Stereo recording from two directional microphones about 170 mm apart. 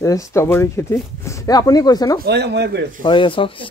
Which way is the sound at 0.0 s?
20° left (ahead or behind).